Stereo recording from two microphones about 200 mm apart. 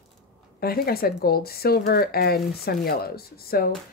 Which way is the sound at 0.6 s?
50° left (ahead or behind).